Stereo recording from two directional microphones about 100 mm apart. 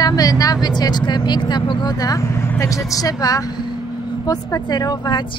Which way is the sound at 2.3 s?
25° left (ahead or behind).